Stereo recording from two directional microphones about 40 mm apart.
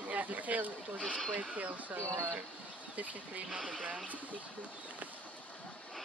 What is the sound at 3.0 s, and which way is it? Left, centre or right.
Speech, right.